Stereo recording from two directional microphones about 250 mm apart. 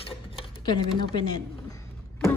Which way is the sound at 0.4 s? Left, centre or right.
Centre.